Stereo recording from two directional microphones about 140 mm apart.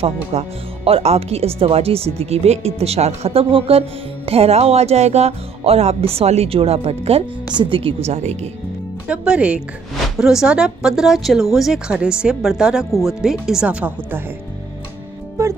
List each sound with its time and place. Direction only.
0.0 s speech: 50° right (ahead or behind)
8.1 s speech: 55° right (ahead or behind)
9.0 s speech: 10° right (ahead or behind)